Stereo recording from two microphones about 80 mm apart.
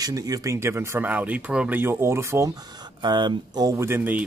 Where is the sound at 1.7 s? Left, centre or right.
Right.